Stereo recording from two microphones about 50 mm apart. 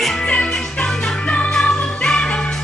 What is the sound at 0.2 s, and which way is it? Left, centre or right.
Music, centre.